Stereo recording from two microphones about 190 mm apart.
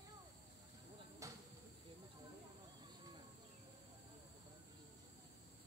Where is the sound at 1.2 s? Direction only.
15° right (ahead or behind).